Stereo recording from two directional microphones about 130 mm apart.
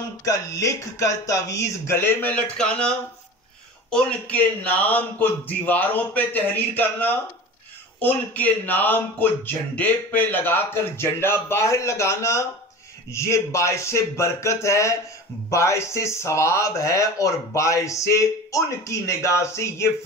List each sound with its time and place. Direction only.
0.2 s speech: 25° left (ahead or behind); by 2.9 s 5° left (ahead or behind)
3.9 s speech: 10° left (ahead or behind)